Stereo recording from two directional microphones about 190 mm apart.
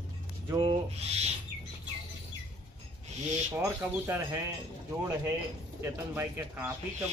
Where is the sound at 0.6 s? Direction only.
30° right (ahead or behind).